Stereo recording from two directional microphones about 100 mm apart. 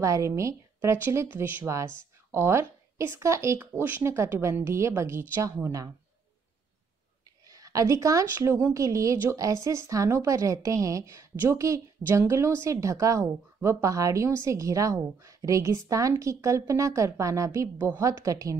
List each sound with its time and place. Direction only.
0.0 s a woman's voice: 30° right (ahead or behind)
7.4 s a woman's voice: 35° right (ahead or behind)